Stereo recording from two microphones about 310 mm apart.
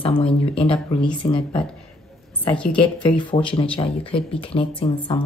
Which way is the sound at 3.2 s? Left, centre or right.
Centre.